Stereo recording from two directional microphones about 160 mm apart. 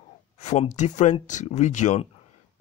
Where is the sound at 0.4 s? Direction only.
45° left (ahead or behind).